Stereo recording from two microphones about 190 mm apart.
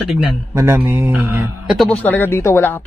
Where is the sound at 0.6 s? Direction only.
15° right (ahead or behind).